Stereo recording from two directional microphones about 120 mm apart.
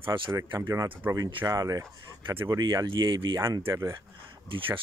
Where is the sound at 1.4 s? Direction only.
30° right (ahead or behind).